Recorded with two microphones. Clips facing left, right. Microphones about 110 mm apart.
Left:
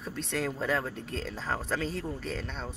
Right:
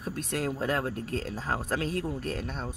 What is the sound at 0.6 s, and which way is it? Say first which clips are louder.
Speech: right 1 dB; 50° right (ahead or behind).